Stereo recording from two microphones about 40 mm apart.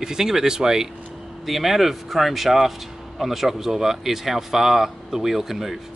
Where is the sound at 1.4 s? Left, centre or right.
Centre.